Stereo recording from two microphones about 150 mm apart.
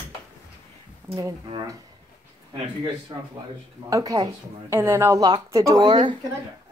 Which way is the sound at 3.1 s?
30° right (ahead or behind).